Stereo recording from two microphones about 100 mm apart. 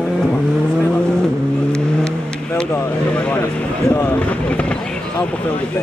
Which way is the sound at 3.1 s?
15° left (ahead or behind).